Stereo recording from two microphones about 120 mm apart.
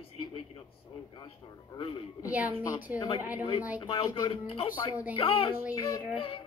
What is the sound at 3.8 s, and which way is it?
Speech, 45° left (ahead or behind).